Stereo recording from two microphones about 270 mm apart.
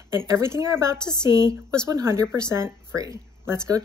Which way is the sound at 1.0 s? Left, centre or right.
Centre.